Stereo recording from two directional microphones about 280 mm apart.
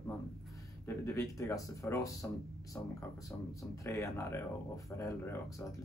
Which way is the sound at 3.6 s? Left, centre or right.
Centre.